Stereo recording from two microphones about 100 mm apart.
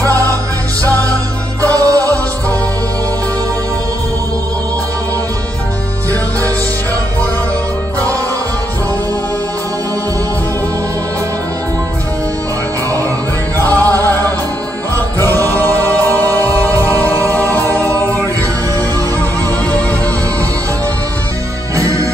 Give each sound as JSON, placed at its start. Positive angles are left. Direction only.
{"t": 0.0, "sound": "music", "side_deg": -35}
{"t": 1.6, "sound": "music", "side_deg": -35}
{"t": 13.7, "sound": "music", "side_deg": -35}
{"t": 15.5, "sound": "music", "side_deg": 15}
{"t": 16.3, "sound": "music", "side_deg": -35}
{"t": 17.8, "sound": "music", "side_deg": 15}
{"t": 21.7, "sound": "music", "side_deg": -35}